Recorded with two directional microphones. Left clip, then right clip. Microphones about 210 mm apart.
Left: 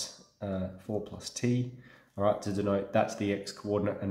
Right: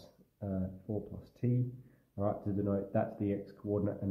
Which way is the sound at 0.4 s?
5° left (ahead or behind).